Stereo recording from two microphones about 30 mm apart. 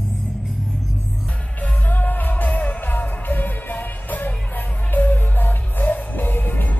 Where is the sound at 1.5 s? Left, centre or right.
Left.